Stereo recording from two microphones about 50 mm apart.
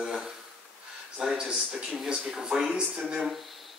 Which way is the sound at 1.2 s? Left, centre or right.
Centre.